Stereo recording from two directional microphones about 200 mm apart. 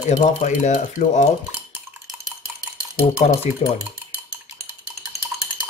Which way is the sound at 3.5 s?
35° left (ahead or behind).